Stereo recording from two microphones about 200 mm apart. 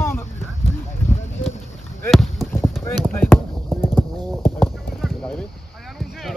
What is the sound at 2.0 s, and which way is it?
Rowboat, centre (ahead or behind).